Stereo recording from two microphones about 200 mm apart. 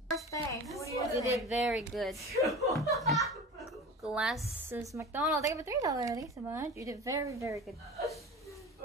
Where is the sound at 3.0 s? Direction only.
Centre (ahead or behind).